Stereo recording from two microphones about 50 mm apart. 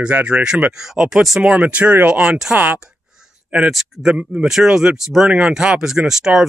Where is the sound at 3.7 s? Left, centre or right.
Centre.